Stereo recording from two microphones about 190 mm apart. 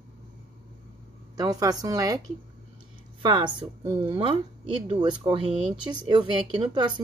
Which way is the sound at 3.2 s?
25° right (ahead or behind).